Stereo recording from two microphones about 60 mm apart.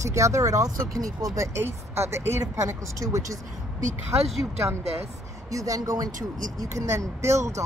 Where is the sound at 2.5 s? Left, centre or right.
Right.